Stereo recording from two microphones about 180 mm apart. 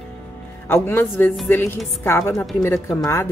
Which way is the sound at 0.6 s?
15° left (ahead or behind).